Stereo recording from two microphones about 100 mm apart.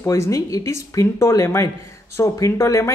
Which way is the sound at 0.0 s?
30° left (ahead or behind).